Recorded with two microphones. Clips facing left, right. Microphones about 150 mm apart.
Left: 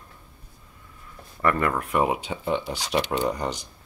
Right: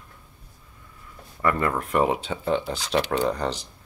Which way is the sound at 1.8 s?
5° left (ahead or behind).